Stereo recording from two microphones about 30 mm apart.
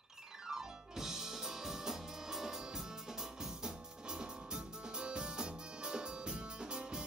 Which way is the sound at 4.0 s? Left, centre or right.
Right.